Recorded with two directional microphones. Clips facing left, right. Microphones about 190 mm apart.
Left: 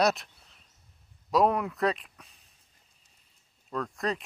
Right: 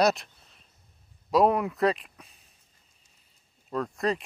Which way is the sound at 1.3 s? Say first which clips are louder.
Right 2 dB; centre (ahead or behind).